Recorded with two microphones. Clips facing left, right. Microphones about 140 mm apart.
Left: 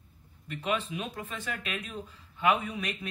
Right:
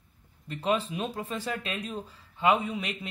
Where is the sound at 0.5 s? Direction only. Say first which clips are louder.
Right 4 dB; 35° right (ahead or behind).